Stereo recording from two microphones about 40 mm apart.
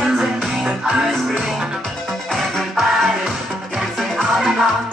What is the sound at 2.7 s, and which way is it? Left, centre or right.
Music, centre.